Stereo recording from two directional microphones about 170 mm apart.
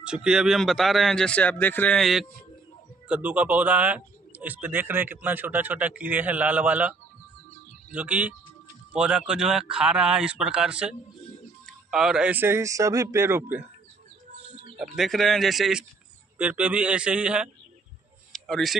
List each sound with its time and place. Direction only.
0.0 s speech: 5° right (ahead or behind)
14.5 s bird: 30° right (ahead or behind)
14.8 s speech: centre (ahead or behind)
18.3 s music: centre (ahead or behind)